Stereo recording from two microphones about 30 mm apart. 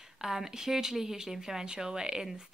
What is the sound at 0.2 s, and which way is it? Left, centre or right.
A woman's voice, centre.